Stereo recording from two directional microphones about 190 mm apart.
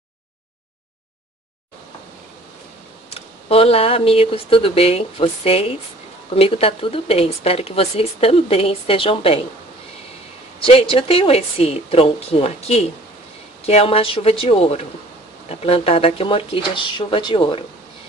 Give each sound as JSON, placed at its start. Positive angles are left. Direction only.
{"t": 3.2, "sound": "speech", "side_deg": 30}
{"t": 10.6, "sound": "speech", "side_deg": 30}